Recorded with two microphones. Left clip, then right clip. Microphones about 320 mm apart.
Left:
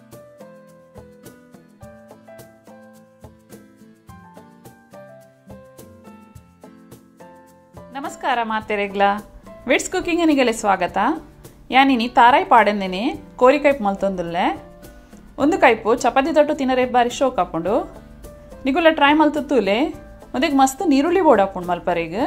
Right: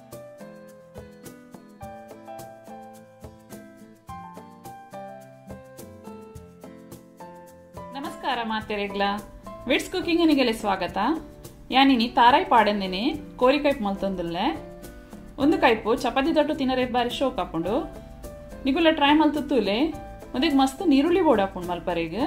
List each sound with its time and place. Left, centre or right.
7.9 s speech: centre